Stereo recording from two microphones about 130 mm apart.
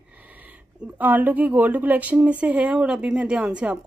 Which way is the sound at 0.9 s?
15° right (ahead or behind).